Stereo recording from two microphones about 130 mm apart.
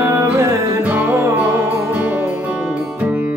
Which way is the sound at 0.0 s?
20° right (ahead or behind).